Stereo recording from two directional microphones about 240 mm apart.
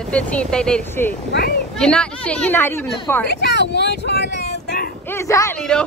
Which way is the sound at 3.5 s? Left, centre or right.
Left.